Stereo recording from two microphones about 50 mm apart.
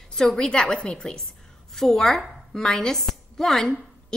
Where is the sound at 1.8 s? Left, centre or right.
Centre.